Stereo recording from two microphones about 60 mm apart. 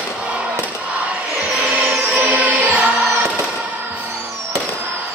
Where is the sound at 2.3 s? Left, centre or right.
Right.